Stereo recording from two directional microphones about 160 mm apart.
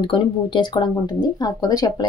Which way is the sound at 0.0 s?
30° left (ahead or behind).